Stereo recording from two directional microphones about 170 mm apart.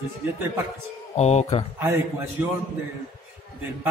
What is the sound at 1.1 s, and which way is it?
Speech, 40° left (ahead or behind).